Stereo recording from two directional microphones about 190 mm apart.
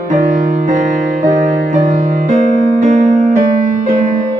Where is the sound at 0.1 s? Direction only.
40° right (ahead or behind).